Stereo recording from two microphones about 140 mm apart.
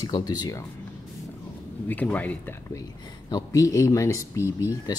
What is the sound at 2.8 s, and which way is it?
Speech, 25° left (ahead or behind).